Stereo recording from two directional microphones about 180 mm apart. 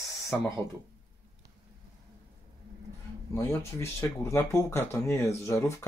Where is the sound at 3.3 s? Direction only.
15° left (ahead or behind).